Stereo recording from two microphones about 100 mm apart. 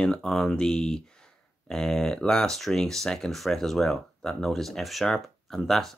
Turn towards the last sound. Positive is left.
turn(degrees=5)  # may be behind; listen again after turning